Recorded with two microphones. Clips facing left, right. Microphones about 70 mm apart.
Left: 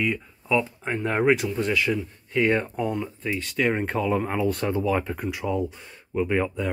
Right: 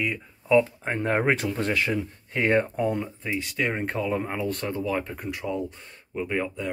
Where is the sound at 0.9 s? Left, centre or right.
Right.